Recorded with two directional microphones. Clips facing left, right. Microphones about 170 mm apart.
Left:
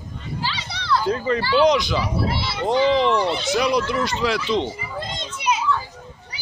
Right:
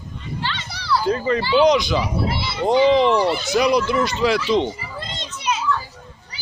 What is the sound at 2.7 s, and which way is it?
Speech, 10° right (ahead or behind).